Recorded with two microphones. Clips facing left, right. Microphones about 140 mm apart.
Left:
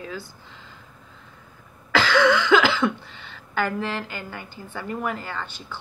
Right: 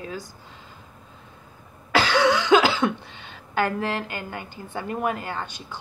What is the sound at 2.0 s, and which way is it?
Cough, 20° right (ahead or behind).